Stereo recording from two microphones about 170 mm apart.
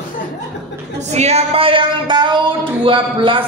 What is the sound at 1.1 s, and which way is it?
Speech, 40° right (ahead or behind).